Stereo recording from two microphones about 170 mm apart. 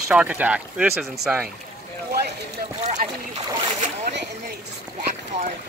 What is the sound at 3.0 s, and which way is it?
Boat, 50° right (ahead or behind).